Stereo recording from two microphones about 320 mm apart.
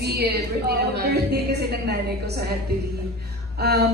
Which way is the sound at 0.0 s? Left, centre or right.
Right.